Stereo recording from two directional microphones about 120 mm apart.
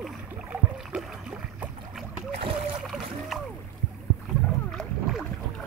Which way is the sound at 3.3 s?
Centre (ahead or behind).